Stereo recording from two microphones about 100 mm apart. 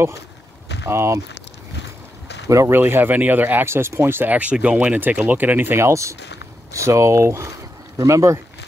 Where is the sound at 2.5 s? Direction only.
25° right (ahead or behind).